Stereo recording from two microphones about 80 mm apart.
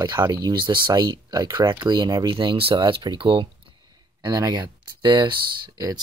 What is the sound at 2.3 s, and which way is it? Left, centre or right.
Speech, right.